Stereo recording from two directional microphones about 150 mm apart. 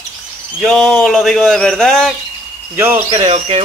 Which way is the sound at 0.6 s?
5° left (ahead or behind).